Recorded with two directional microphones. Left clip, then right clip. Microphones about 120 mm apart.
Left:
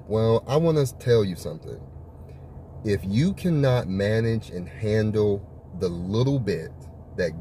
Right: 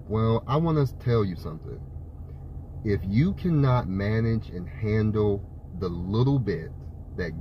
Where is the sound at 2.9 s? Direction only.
15° left (ahead or behind).